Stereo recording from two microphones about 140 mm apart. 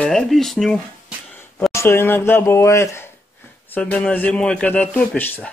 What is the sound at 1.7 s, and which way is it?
A man's voice, 15° left (ahead or behind).